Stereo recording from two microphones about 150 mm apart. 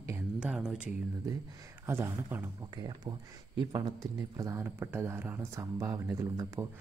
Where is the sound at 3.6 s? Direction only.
30° right (ahead or behind).